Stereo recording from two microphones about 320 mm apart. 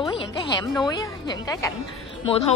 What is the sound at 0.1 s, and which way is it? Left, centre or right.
A woman's voice, centre.